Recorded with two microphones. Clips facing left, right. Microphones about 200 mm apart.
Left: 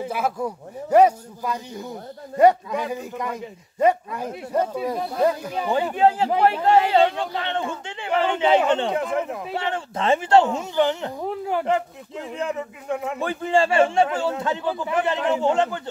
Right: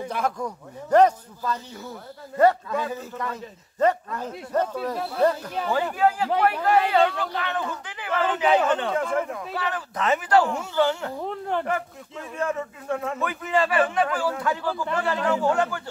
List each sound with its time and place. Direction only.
0.1 s a man's voice: 5° left (ahead or behind)
11.2 s speech: 10° left (ahead or behind)
11.6 s speech: 20° left (ahead or behind)
13.2 s a man's voice: 30° left (ahead or behind)